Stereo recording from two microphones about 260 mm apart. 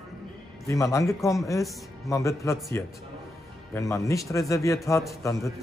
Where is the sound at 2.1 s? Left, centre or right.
Centre.